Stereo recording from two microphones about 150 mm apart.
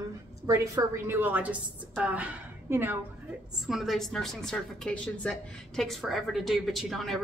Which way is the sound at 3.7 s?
Centre (ahead or behind).